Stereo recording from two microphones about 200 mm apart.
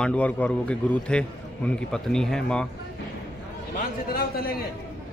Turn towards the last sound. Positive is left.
turn(degrees=50)  # may be behind; listen again after turning